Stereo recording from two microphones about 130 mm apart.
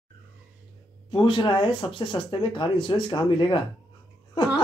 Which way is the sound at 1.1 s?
40° left (ahead or behind).